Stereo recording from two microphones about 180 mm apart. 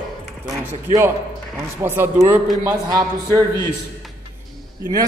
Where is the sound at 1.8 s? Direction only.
15° right (ahead or behind).